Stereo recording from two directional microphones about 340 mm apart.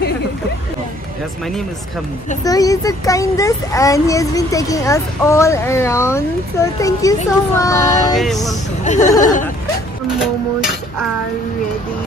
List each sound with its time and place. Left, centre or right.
2.4 s a child's voice: centre
7.6 s female singing: centre
8.8 s speech: left
10.0 s music: centre